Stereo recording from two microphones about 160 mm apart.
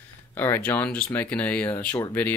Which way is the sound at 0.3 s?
10° left (ahead or behind).